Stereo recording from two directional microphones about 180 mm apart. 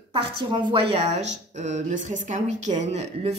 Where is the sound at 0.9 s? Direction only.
40° right (ahead or behind).